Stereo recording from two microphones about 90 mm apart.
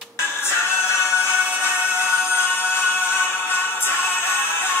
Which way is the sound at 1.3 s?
15° right (ahead or behind).